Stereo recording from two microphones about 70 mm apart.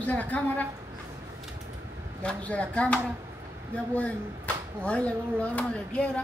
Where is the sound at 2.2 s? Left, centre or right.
Centre.